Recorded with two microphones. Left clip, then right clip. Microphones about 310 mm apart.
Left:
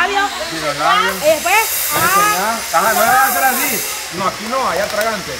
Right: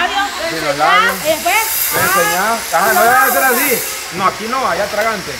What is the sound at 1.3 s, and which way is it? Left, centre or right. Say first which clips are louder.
Speech: left 1 dB; centre.